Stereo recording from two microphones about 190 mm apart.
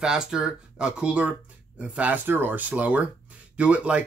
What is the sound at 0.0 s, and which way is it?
Speech, 5° right (ahead or behind).